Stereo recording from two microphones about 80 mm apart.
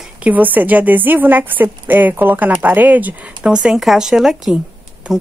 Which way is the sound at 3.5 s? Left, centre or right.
Centre.